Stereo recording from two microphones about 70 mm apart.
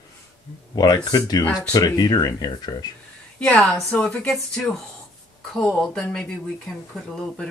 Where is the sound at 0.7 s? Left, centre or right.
Left.